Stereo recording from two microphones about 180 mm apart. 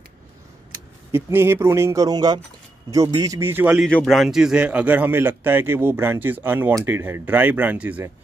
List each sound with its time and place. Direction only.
1.1 s a man's voice: 15° right (ahead or behind)
3.8 s a man's voice: centre (ahead or behind)